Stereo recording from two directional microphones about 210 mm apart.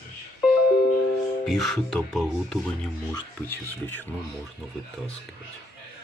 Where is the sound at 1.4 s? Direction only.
Centre (ahead or behind).